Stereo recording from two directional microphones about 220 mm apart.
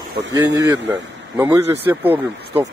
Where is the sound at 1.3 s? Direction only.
10° right (ahead or behind).